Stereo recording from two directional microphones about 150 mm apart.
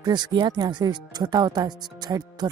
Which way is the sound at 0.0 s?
30° right (ahead or behind).